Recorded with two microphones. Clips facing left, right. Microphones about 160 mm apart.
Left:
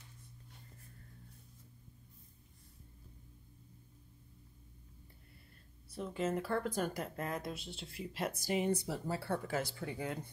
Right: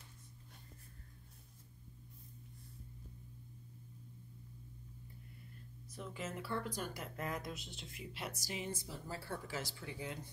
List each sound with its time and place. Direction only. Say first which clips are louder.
5.9 s speech: left 8 dB; 30° left (ahead or behind)
6.4 s speech: left 6 dB; 50° left (ahead or behind)
7.2 s speech: left 3 dB; 30° left (ahead or behind)
8.1 s speech: left 10 dB; 50° left (ahead or behind)